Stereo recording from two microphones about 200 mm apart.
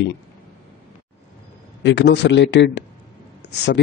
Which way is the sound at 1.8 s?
65° left (ahead or behind).